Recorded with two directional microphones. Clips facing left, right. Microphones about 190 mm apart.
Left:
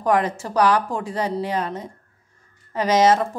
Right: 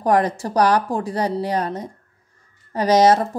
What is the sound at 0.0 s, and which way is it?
A woman's voice, 35° right (ahead or behind).